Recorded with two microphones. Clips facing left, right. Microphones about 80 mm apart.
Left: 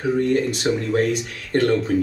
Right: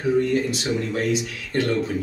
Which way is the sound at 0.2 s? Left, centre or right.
Left.